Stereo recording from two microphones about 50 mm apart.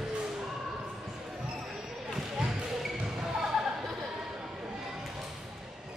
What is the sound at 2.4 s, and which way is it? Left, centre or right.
Basketball bounce, centre.